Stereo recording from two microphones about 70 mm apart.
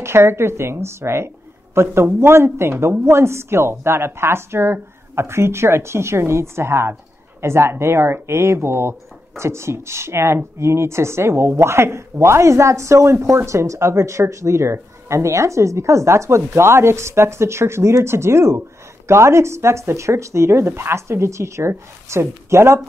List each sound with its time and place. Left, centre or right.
0.0 s speech: right